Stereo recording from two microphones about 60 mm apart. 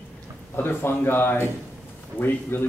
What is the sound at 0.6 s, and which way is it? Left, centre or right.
A man's voice, left.